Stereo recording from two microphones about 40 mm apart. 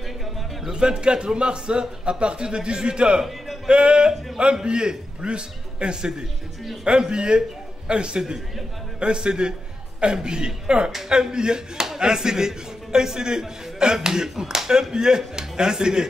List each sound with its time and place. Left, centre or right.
0.7 s a man's voice: right